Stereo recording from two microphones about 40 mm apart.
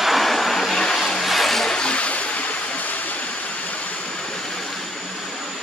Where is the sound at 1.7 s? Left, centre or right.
Left.